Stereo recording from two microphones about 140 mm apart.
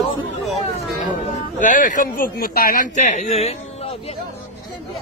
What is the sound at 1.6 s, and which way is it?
Speech, 65° left (ahead or behind).